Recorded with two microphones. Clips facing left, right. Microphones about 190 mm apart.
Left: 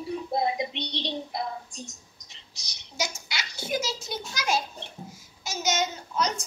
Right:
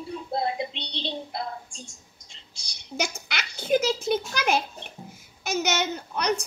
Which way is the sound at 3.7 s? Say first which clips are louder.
Right 9 dB; 60° right (ahead or behind).